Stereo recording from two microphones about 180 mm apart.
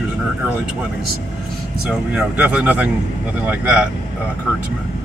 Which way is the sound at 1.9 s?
5° right (ahead or behind).